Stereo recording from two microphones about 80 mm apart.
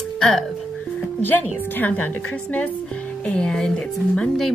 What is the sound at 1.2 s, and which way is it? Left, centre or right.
Speech, left.